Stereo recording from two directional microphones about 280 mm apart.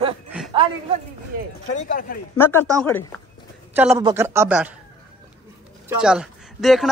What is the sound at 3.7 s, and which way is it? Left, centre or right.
Speech, centre.